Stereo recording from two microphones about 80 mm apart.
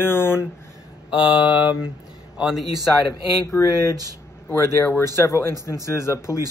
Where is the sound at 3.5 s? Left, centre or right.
Left.